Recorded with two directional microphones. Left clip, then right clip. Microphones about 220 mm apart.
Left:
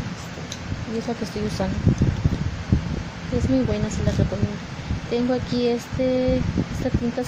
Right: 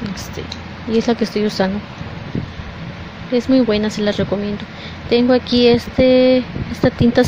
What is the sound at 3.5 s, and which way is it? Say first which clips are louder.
Speech: right 9 dB; 15° right (ahead or behind).